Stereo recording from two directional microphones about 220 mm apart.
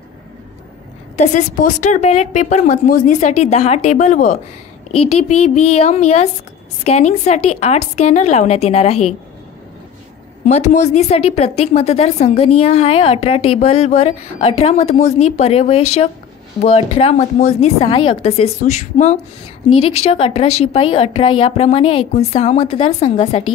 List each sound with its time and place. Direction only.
1.1 s a woman's voice: 35° left (ahead or behind)
5.8 s a woman's voice: 30° left (ahead or behind)
10.4 s a woman's voice: 30° left (ahead or behind)